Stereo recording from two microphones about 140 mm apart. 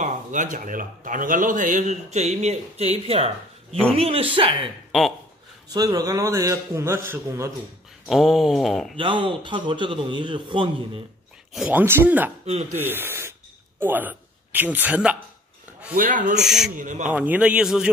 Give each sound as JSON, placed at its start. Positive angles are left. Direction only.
{"t": 0.0, "sound": "a man's voice", "side_deg": -65}
{"t": 5.7, "sound": "a man's voice", "side_deg": -25}
{"t": 8.1, "sound": "a sound", "side_deg": 0}
{"t": 8.9, "sound": "a man's voice", "side_deg": -40}
{"t": 11.5, "sound": "a man's voice", "side_deg": -5}
{"t": 16.0, "sound": "speech", "side_deg": -75}
{"t": 16.3, "sound": "a sound", "side_deg": 0}
{"t": 16.7, "sound": "speech", "side_deg": -65}
{"t": 17.1, "sound": "a man's voice", "side_deg": -10}